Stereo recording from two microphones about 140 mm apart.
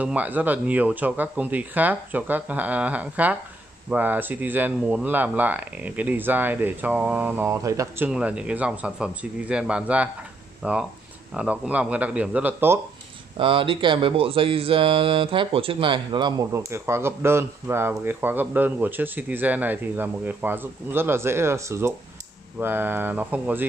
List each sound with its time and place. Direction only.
0.0 s speech: 10° right (ahead or behind)
8.1 s speech: 10° right (ahead or behind)
13.4 s speech: 35° right (ahead or behind)
16.5 s speech: 20° right (ahead or behind)